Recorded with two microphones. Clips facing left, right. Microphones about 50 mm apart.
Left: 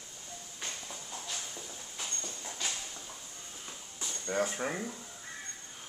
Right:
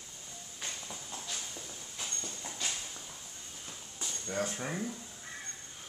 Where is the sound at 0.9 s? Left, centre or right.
Centre.